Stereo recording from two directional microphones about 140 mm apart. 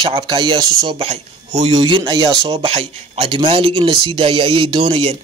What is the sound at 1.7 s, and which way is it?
Speech, 35° right (ahead or behind).